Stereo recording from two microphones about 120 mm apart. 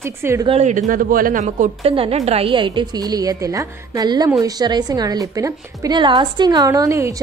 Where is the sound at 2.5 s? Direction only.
40° right (ahead or behind).